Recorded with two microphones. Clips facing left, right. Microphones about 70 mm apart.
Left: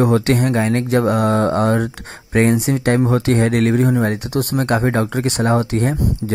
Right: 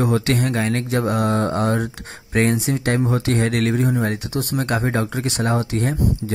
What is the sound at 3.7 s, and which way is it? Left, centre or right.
Speech, left.